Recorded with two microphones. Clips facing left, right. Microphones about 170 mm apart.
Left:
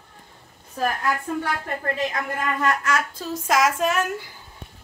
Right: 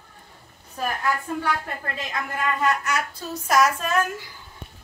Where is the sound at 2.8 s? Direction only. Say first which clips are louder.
Left 2 dB; 90° left.